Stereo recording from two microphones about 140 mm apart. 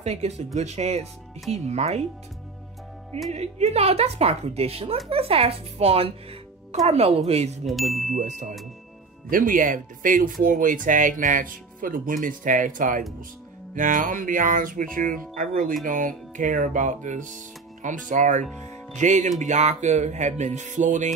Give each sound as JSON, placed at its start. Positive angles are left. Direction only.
{"t": 0.0, "sound": "a woman's voice", "side_deg": -50}
{"t": 3.3, "sound": "a woman's voice", "side_deg": -50}
{"t": 9.3, "sound": "speech", "side_deg": -70}